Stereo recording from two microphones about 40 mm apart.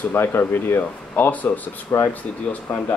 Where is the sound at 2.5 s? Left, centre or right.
Left.